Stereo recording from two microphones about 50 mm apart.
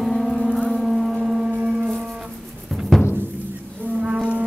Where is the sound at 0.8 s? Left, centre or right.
Centre.